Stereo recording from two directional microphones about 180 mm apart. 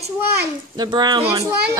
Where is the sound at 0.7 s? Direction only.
25° right (ahead or behind).